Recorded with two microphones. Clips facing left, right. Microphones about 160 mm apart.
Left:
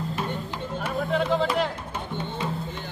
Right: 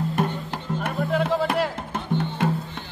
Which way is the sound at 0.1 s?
55° right (ahead or behind).